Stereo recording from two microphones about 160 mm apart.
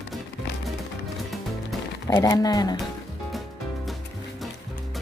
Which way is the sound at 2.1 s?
25° left (ahead or behind).